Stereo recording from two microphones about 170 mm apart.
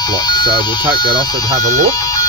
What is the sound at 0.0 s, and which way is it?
Speech, 25° left (ahead or behind).